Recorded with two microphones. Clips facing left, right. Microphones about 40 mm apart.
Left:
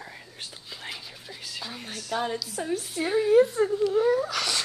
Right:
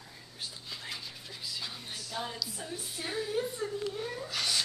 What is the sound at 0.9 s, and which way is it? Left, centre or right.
Whispering, centre.